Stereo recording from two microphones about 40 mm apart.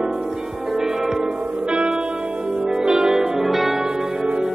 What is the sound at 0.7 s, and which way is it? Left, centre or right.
Music, centre.